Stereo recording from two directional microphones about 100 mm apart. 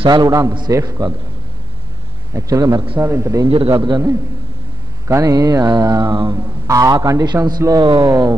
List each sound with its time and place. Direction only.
0.1 s a man's voice: 40° right (ahead or behind)
2.3 s a man's voice: 35° right (ahead or behind)
3.4 s a man's voice: 70° right (ahead or behind)
3.7 s a man's voice: 50° right (ahead or behind)
5.0 s a man's voice: 35° right (ahead or behind)